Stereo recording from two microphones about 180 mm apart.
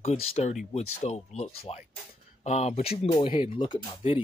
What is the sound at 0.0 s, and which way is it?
Speech, 35° left (ahead or behind).